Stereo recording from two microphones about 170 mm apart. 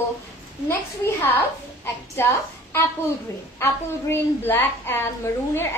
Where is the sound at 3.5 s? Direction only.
15° left (ahead or behind).